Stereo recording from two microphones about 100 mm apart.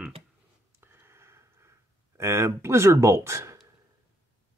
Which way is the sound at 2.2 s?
25° right (ahead or behind).